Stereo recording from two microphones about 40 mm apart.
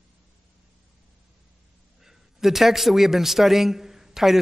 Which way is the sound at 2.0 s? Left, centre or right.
Centre.